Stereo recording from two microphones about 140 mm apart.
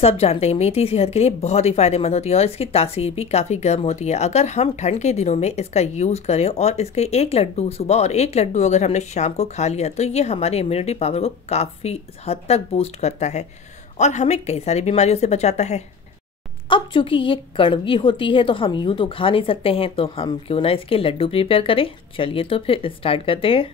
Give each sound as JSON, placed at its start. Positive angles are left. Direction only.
{"t": 0.0, "sound": "speech", "side_deg": 45}
{"t": 16.6, "sound": "a woman's voice", "side_deg": 35}